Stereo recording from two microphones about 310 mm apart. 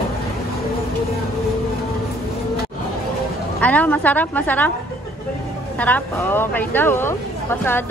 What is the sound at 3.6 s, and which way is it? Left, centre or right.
A woman's voice, centre.